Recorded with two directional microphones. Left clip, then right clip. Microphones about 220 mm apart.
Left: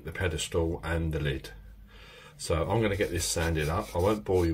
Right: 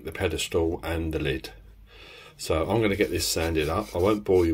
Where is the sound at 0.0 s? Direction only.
40° right (ahead or behind).